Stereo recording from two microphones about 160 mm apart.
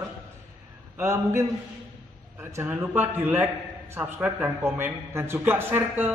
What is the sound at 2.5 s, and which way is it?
Speech, 15° right (ahead or behind).